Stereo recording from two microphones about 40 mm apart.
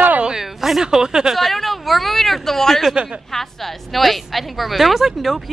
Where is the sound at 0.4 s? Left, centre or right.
Centre.